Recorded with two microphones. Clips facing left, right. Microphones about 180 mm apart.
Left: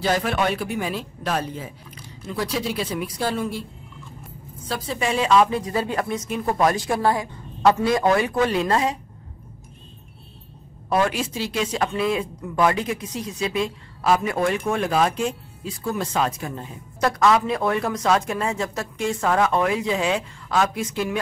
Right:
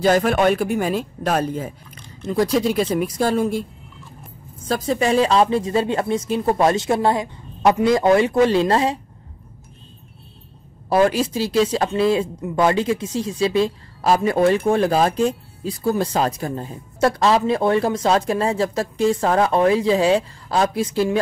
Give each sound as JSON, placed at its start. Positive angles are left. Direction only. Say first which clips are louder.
{"t": 0.0, "sound": "speech", "louder": "right 6 dB", "side_deg": -45}
{"t": 4.6, "sound": "speech", "louder": "right 6 dB", "side_deg": -45}
{"t": 10.9, "sound": "speech", "louder": "right 5 dB", "side_deg": -35}